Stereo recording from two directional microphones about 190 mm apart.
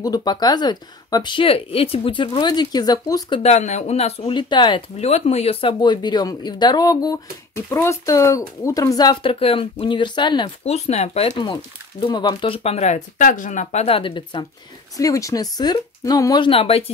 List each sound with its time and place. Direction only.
0.0 s speech: 20° left (ahead or behind)